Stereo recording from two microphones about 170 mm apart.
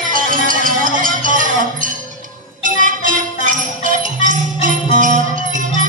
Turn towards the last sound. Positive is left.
turn(degrees=-50)  # may be behind; listen again after turning